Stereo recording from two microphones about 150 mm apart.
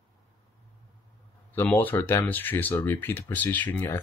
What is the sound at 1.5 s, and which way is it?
Speech, 10° left (ahead or behind).